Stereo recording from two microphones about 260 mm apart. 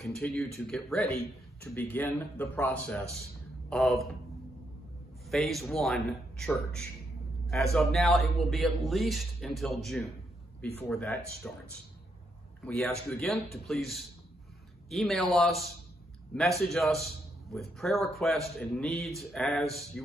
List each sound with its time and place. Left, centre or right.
0.0 s a man's voice: centre
5.2 s a man's voice: centre
12.6 s a man's voice: centre